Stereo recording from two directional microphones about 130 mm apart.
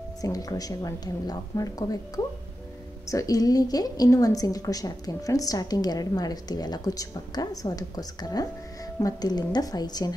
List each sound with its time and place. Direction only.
0.2 s a woman's voice: 30° left (ahead or behind)